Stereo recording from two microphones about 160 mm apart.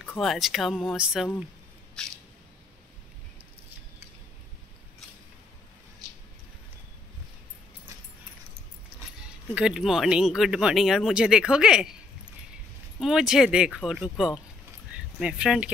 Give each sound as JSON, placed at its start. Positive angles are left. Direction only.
{"t": 0.0, "sound": "speech", "side_deg": 5}
{"t": 9.5, "sound": "speech", "side_deg": -5}
{"t": 13.0, "sound": "speech", "side_deg": 0}